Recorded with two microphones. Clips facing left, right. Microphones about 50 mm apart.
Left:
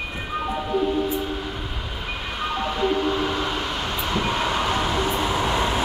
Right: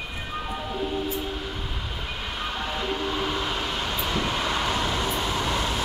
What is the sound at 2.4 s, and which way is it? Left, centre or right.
Train, centre.